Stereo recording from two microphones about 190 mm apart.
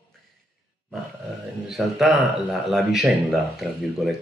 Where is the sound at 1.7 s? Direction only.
Centre (ahead or behind).